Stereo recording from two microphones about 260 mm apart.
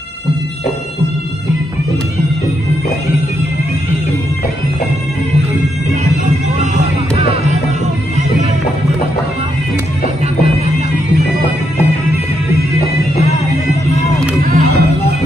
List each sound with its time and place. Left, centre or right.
14.4 s music: right